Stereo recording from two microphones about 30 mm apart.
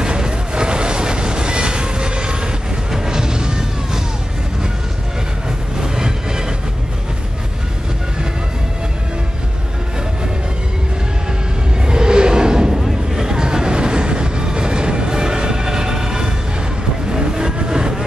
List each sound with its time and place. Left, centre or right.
0.0 s train: right
2.9 s music: right
5.8 s music: right
11.8 s a sound: right
13.1 s vehicle: right